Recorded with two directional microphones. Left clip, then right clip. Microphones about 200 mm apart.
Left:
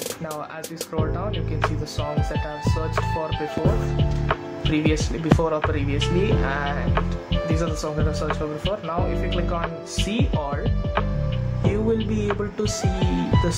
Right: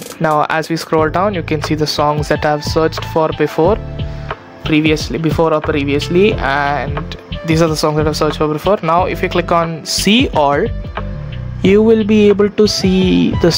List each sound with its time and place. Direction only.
0.2 s speech: 55° right (ahead or behind)
4.6 s speech: 35° right (ahead or behind)
11.6 s speech: 45° right (ahead or behind)